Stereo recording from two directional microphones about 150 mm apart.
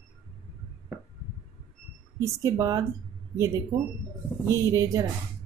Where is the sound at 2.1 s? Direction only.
20° right (ahead or behind).